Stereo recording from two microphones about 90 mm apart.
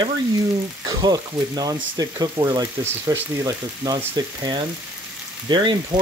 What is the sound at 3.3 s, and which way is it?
Speech, 45° right (ahead or behind).